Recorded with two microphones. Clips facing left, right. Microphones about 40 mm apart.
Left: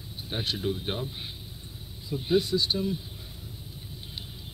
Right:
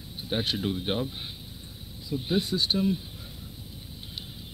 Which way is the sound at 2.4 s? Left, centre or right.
Right.